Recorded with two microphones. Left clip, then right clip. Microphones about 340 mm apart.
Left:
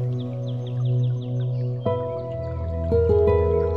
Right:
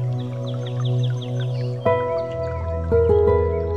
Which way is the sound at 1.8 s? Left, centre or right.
Right.